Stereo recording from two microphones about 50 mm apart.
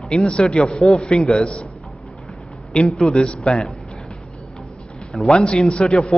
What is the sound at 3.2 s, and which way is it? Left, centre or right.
Speech, centre.